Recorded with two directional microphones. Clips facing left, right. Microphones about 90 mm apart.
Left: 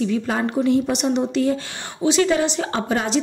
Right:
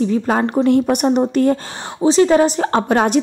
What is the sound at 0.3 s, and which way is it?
A woman's voice, 45° right (ahead or behind).